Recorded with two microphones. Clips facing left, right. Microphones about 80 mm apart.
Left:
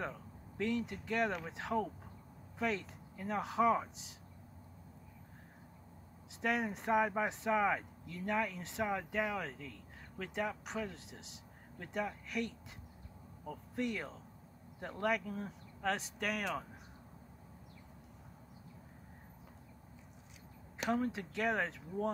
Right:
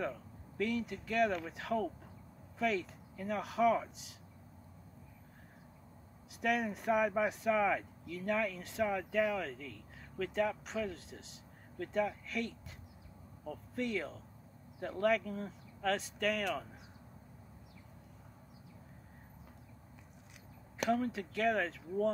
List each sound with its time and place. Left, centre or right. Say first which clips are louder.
0.6 s speech: right 1 dB; left
6.4 s speech: right 2 dB; left
20.9 s speech: right 1 dB; left